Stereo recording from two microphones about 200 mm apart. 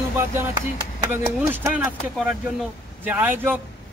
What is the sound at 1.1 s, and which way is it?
Speech, 10° right (ahead or behind).